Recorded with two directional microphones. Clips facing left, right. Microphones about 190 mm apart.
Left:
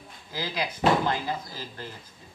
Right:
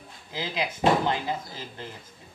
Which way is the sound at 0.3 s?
25° right (ahead or behind).